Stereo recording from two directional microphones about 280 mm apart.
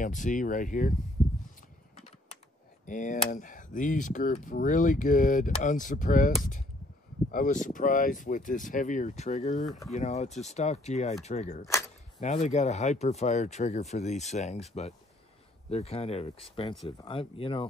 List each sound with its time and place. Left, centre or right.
0.0 s speech: left
2.9 s speech: left